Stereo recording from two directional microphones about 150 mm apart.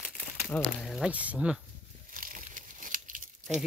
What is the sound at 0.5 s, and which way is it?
Speech, 5° left (ahead or behind).